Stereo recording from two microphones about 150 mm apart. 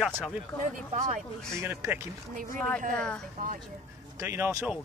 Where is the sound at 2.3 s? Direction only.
65° right (ahead or behind).